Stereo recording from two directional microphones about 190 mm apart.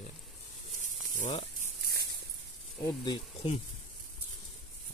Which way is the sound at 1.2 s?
35° left (ahead or behind).